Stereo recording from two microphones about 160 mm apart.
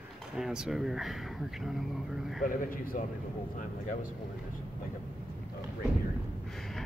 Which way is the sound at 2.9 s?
50° left (ahead or behind).